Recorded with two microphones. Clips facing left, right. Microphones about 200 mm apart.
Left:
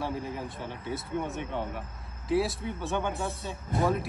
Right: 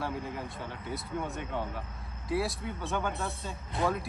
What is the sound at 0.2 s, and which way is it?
Speech, centre (ahead or behind).